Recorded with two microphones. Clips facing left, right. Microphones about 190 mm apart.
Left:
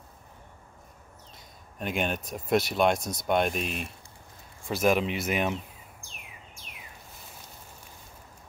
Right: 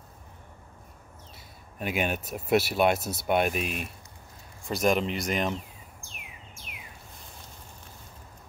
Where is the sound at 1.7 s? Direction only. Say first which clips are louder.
Right 1 dB; 5° right (ahead or behind).